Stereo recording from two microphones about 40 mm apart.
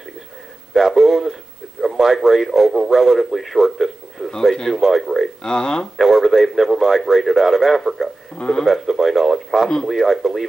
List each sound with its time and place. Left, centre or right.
0.7 s speech: centre
4.3 s speech: centre
4.7 s speech: centre
5.4 s speech: centre
5.9 s speech: centre
8.4 s speech: centre
8.6 s speech: centre